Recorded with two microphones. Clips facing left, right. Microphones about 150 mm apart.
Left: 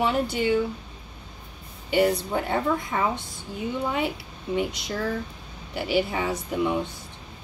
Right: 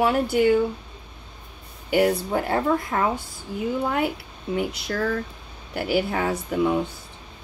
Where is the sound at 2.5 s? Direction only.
65° right (ahead or behind).